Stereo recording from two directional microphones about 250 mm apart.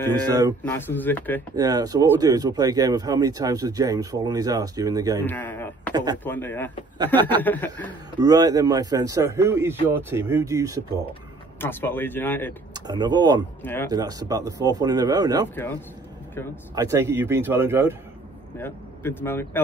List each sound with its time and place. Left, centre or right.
0.7 s speech: centre
1.5 s speech: centre
5.2 s speech: centre
8.2 s speech: centre
11.6 s speech: centre
12.7 s speech: centre
16.7 s speech: centre
18.6 s speech: centre